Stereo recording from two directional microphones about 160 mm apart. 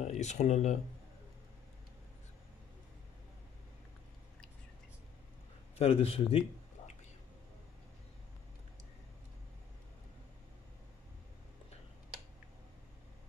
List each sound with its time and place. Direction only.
0.0 s speech: 45° left (ahead or behind)
5.8 s a man's voice: 40° left (ahead or behind)